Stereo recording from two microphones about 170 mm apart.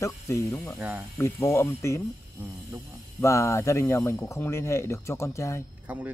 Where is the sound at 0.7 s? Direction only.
10° right (ahead or behind).